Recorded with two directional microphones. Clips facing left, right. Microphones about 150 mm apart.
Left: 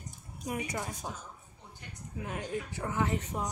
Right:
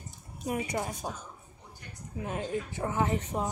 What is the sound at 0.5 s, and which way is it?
Speech, 25° right (ahead or behind).